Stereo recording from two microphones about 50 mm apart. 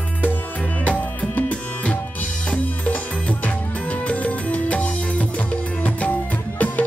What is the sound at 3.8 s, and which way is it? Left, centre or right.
Music, left.